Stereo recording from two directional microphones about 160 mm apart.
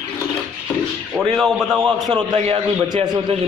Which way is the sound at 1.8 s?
25° right (ahead or behind).